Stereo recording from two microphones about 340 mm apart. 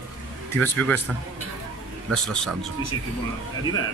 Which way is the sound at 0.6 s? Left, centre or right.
Centre.